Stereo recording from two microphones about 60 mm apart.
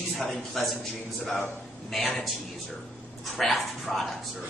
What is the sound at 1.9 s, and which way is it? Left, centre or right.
Speech, centre.